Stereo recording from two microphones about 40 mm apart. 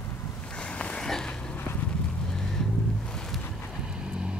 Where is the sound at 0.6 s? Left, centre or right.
Left.